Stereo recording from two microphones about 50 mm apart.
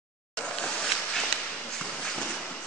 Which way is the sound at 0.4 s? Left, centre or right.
Centre.